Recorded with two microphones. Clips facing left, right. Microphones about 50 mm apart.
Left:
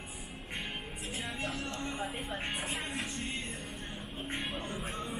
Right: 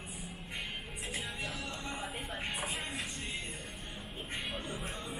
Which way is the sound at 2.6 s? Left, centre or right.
Centre.